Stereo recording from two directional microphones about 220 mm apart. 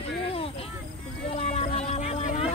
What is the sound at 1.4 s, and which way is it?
Music, 25° left (ahead or behind).